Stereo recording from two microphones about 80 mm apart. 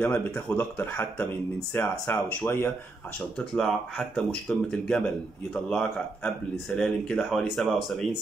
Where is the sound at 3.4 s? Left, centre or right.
Centre.